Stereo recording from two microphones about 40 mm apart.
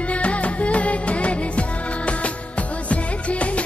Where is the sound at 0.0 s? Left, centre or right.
Left.